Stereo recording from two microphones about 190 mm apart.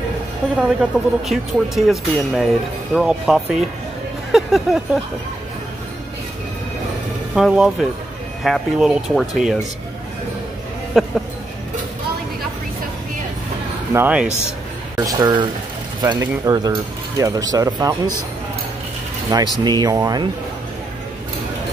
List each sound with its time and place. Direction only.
0.6 s speech: 5° right (ahead or behind)
7.3 s speech: 5° right (ahead or behind)
10.9 s speech: centre (ahead or behind)
13.9 s speech: 5° right (ahead or behind)
15.0 s speech: 20° right (ahead or behind)
19.3 s speech: 20° right (ahead or behind)